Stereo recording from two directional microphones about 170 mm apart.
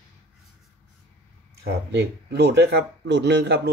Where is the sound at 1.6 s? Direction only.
90° right.